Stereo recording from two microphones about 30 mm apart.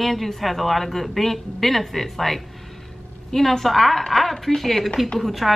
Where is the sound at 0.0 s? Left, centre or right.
Centre.